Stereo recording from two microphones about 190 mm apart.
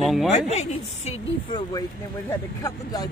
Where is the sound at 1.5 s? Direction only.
20° left (ahead or behind).